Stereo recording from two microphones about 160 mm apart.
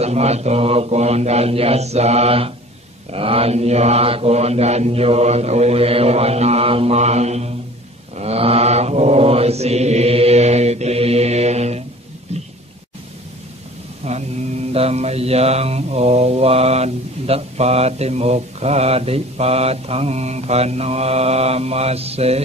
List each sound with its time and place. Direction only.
0.0 s mantra: 40° right (ahead or behind)
14.0 s mantra: 40° right (ahead or behind)